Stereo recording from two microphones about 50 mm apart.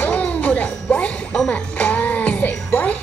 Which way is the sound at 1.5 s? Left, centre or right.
Left.